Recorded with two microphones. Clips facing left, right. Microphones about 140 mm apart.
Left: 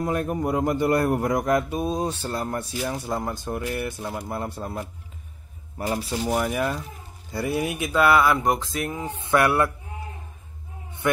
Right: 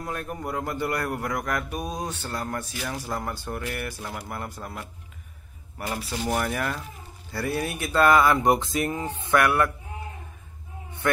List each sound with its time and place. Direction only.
0.0 s speech: 20° left (ahead or behind)
6.1 s speech: 15° left (ahead or behind)
9.2 s speech: 25° left (ahead or behind)